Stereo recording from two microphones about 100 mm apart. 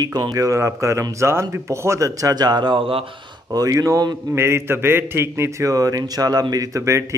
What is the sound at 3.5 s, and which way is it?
A man's voice, 35° right (ahead or behind).